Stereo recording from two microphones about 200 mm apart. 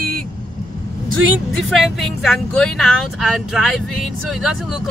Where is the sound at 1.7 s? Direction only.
Centre (ahead or behind).